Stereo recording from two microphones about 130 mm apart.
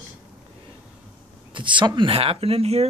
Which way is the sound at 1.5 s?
40° right (ahead or behind).